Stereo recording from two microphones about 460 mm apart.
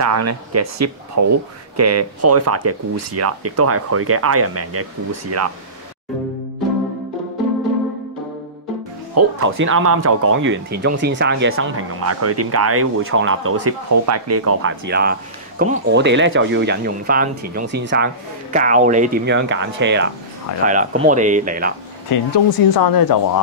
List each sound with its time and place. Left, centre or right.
0.0 s speech: right
9.1 s speech: right
22.3 s speech: left